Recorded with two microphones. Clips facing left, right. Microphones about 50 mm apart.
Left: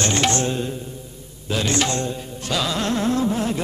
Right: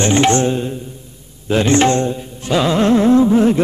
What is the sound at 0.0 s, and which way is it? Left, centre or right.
Carnatic music, right.